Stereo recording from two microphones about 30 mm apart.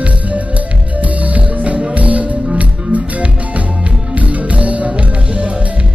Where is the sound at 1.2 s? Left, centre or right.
Right.